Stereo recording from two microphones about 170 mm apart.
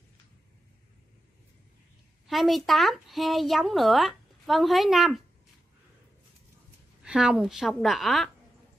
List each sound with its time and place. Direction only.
2.2 s speech: centre (ahead or behind)
7.0 s speech: 5° right (ahead or behind)